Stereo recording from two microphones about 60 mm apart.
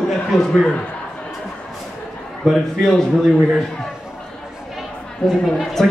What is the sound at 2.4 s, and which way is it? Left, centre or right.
Speech, centre.